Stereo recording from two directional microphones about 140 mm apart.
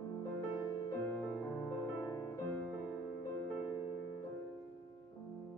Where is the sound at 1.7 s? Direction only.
20° left (ahead or behind).